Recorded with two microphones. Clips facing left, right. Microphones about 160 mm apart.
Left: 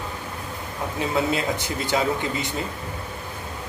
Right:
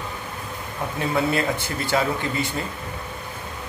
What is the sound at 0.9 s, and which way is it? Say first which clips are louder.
A man's voice: right 1 dB; 20° left (ahead or behind).